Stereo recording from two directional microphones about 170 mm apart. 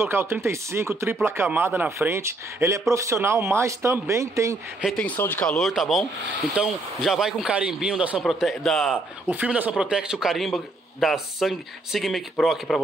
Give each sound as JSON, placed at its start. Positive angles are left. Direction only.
{"t": 0.0, "sound": "speech", "side_deg": -15}
{"t": 4.8, "sound": "a man's voice", "side_deg": 5}
{"t": 9.3, "sound": "a man's voice", "side_deg": -10}